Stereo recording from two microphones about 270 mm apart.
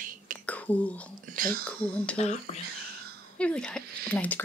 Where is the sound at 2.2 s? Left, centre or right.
Left.